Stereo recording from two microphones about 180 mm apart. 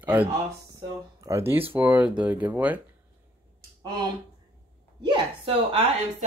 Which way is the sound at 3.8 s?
25° right (ahead or behind).